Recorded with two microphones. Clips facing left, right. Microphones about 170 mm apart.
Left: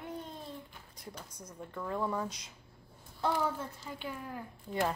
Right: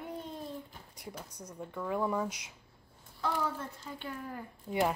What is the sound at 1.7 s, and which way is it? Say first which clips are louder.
Speech: right 2 dB; 5° right (ahead or behind).